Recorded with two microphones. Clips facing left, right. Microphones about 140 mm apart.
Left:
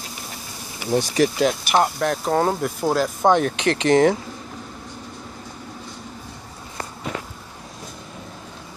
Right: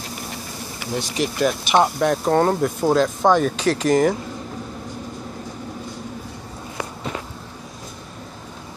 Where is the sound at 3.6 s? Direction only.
70° left (ahead or behind).